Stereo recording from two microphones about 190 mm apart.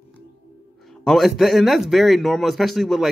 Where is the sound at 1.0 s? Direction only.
Centre (ahead or behind).